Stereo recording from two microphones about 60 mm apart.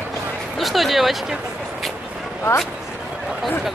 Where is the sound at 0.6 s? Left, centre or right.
Centre.